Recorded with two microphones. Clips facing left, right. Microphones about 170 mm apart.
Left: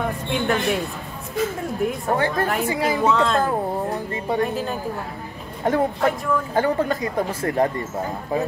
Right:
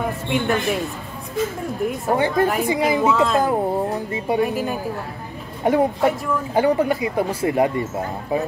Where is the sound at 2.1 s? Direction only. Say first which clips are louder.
Right 5 dB; 15° right (ahead or behind).